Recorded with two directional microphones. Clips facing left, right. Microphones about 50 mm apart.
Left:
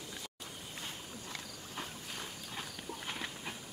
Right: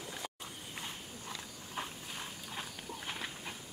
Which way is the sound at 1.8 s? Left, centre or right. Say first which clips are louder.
Right 2 dB; centre.